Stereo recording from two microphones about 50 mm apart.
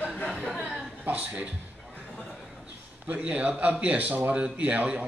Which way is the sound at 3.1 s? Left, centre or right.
Right.